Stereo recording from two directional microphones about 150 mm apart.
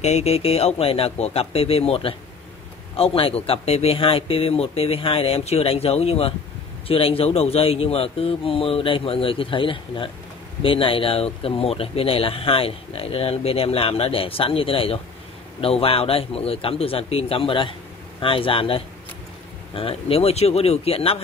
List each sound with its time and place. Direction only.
0.0 s speech: 45° left (ahead or behind)